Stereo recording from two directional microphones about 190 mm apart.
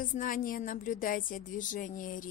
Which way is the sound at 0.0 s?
45° left (ahead or behind).